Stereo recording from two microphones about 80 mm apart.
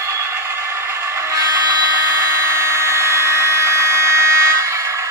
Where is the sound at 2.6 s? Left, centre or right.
Right.